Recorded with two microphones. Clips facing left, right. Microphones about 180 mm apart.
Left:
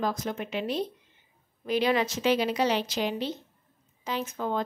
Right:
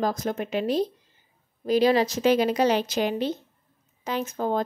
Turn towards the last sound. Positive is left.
turn(degrees=-40)  # may be behind; listen again after turning